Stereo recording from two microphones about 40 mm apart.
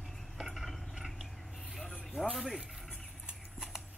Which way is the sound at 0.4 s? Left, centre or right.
Centre.